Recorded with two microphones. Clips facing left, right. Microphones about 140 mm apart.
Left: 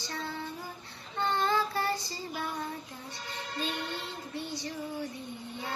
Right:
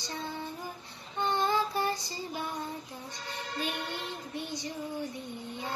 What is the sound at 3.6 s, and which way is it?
Music, 15° right (ahead or behind).